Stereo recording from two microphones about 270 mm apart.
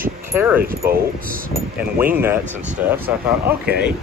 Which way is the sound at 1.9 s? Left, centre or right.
Centre.